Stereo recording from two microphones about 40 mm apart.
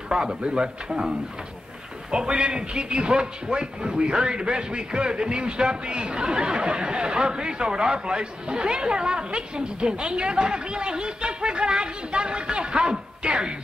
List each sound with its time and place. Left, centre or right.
0.1 s a man's voice: centre
2.0 s a man's voice: right